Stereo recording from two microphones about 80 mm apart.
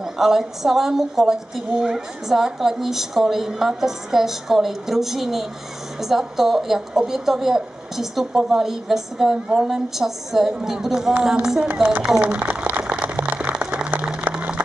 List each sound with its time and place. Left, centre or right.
0.0 s a woman's voice: centre
11.6 s a woman's voice: right
12.0 s a sound: centre